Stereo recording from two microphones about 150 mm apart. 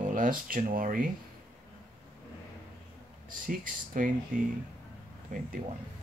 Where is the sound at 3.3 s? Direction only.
65° right (ahead or behind).